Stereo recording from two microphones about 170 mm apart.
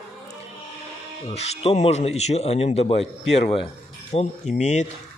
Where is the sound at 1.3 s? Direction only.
40° left (ahead or behind).